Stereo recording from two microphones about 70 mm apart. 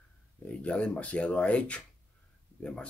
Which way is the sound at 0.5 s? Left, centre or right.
Centre.